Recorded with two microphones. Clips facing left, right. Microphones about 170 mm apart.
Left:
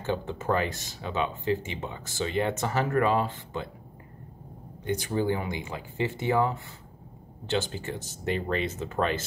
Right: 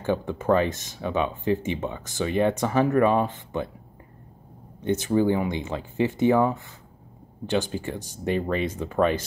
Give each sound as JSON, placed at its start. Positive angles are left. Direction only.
{"t": 0.0, "sound": "speech", "side_deg": -15}
{"t": 4.8, "sound": "speech", "side_deg": -20}